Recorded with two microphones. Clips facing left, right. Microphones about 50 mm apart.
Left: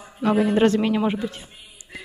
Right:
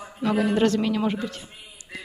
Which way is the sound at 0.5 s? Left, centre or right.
Left.